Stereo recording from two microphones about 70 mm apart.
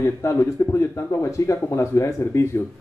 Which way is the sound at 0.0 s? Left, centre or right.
Left.